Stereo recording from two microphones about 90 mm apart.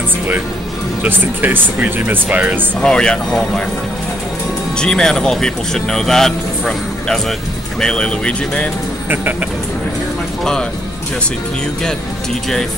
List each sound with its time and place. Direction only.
1.0 s speech: 20° right (ahead or behind)
2.8 s speech: 10° left (ahead or behind)
4.7 s speech: 10° left (ahead or behind)
9.1 s a sound: 20° right (ahead or behind)